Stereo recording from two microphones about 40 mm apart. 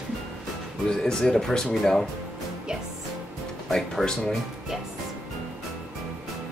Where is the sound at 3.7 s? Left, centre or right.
Centre.